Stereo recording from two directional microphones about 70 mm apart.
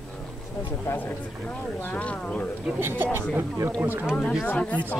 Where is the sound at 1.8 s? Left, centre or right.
Left.